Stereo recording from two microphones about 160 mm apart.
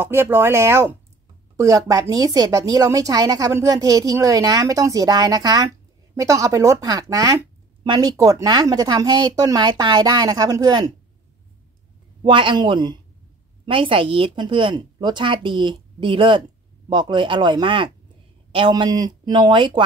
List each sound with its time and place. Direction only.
0.0 s speech: 15° right (ahead or behind)
12.2 s a woman's voice: 30° right (ahead or behind)